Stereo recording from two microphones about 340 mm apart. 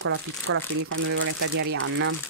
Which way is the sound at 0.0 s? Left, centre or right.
Right.